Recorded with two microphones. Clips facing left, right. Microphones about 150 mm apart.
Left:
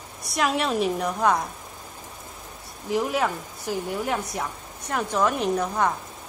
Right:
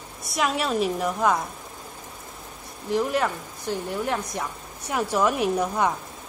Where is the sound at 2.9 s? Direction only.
5° left (ahead or behind).